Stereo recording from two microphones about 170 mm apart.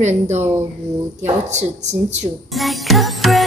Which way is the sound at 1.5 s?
40° right (ahead or behind).